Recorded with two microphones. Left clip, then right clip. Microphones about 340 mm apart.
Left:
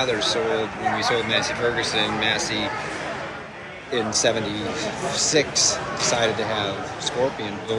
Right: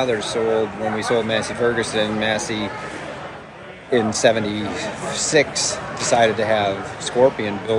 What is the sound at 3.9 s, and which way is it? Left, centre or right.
A man's voice, right.